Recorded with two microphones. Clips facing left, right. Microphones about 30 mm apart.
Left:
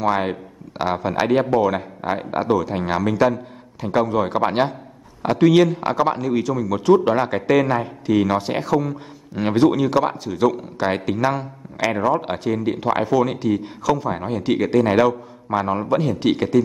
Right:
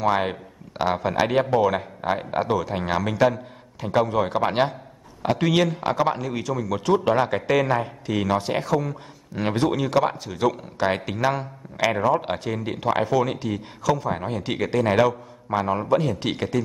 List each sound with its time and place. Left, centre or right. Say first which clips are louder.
0.1 s speech: left 2 dB; centre